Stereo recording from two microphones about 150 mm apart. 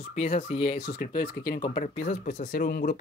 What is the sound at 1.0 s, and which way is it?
Speech, 80° left.